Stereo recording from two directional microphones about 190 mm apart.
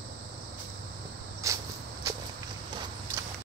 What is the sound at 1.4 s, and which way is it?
Cricket, 15° right (ahead or behind).